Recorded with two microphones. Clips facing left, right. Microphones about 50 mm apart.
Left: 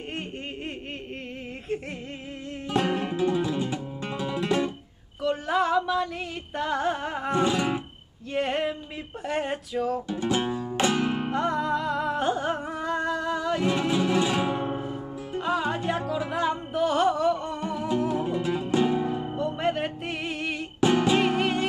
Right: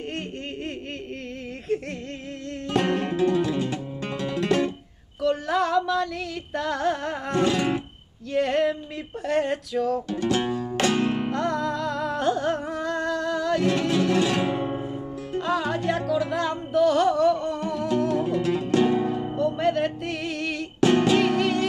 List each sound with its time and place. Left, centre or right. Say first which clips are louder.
1.7 s music: right 4 dB; centre
8.3 s female singing: right 4 dB; centre
9.2 s music: right 5 dB; centre
15.4 s music: right 1 dB; centre
18.9 s music: right 3 dB; centre
19.3 s music: right 5 dB; centre